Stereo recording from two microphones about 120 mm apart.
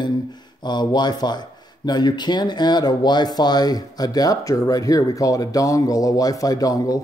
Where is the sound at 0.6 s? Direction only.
40° left (ahead or behind).